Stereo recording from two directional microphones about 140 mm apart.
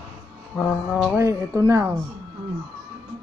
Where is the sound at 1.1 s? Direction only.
20° right (ahead or behind).